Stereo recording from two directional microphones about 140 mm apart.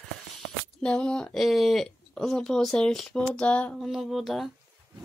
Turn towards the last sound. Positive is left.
turn(degrees=0)  # may be behind; listen again after turning